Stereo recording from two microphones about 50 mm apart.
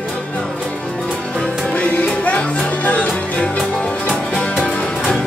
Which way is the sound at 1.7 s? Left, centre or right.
Left.